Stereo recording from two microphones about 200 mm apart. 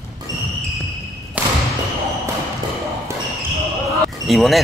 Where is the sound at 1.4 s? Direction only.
5° right (ahead or behind).